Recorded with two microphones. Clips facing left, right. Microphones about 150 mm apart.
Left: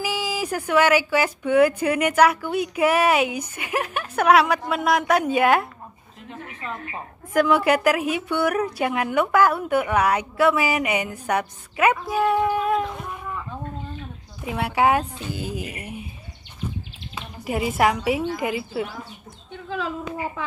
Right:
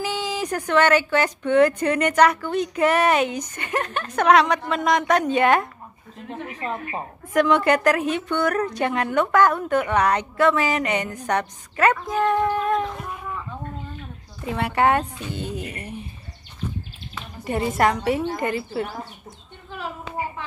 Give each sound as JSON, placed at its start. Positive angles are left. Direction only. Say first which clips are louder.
{"t": 0.0, "sound": "a woman's voice", "louder": "even", "side_deg": 5}
{"t": 6.6, "sound": "a woman's voice", "louder": "right 4 dB", "side_deg": -40}
{"t": 7.3, "sound": "a woman's voice", "louder": "even", "side_deg": 5}
{"t": 14.4, "sound": "speech", "louder": "even", "side_deg": 5}
{"t": 17.1, "sound": "speech", "louder": "even", "side_deg": 5}